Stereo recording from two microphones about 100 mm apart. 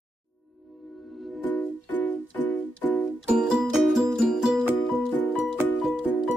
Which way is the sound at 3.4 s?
5° right (ahead or behind).